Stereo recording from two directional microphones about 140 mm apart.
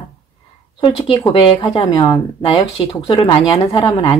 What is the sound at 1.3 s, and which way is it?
Speech, 40° left (ahead or behind).